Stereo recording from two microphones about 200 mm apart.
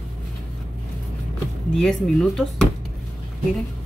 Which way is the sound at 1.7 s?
Centre (ahead or behind).